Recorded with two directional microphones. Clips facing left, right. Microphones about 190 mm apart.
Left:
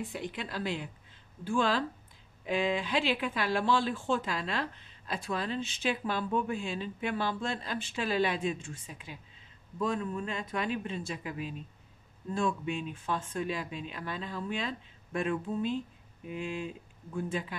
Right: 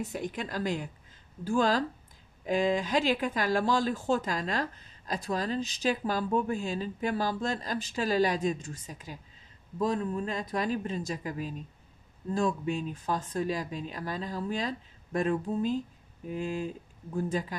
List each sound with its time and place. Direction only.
0.0 s speech: 45° right (ahead or behind)